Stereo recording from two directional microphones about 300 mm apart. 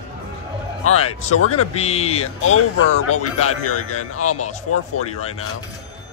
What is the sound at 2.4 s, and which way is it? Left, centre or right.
A man's voice, left.